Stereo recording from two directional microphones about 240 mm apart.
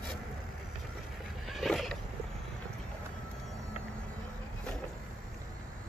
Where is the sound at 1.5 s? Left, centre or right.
Centre.